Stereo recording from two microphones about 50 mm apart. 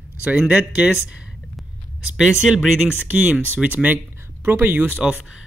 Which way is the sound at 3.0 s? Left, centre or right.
Right.